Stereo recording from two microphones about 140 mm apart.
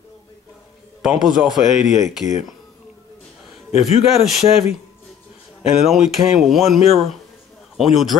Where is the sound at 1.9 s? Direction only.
60° left (ahead or behind).